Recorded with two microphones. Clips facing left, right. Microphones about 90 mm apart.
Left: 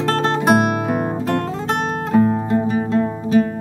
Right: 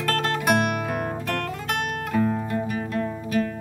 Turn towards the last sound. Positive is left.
turn(degrees=25)  # may be behind; listen again after turning